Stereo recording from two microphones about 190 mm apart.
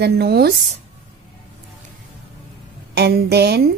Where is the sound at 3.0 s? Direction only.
60° right (ahead or behind).